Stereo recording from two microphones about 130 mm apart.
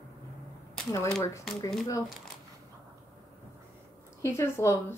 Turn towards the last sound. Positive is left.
turn(degrees=20)  # may be behind; listen again after turning